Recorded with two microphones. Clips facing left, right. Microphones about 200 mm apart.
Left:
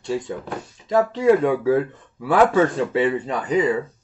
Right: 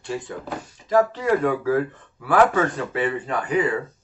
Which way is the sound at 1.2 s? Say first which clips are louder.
Left 5 dB; 20° left (ahead or behind).